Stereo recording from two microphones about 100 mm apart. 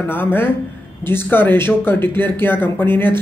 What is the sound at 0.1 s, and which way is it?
A man's voice, 20° left (ahead or behind).